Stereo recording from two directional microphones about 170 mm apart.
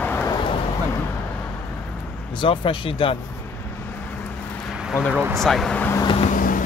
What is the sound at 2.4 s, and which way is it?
Speech, 30° left (ahead or behind).